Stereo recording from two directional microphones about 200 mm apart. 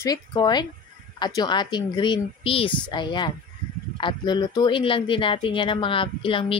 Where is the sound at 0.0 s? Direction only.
20° left (ahead or behind).